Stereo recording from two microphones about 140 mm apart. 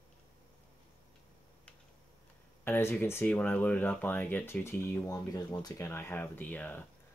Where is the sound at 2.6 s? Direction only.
15° left (ahead or behind).